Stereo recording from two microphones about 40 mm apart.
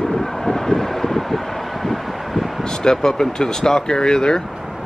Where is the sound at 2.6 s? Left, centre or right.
Centre.